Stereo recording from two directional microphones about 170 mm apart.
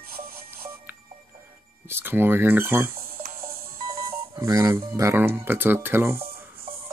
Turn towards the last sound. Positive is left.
turn(degrees=-15)  # may be behind; listen again after turning